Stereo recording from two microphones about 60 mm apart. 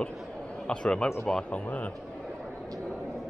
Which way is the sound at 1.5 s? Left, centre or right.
Left.